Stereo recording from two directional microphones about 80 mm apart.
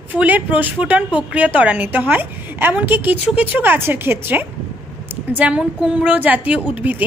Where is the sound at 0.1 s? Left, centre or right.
Centre.